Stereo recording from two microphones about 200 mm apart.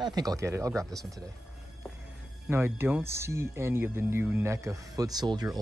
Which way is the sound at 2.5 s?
10° right (ahead or behind).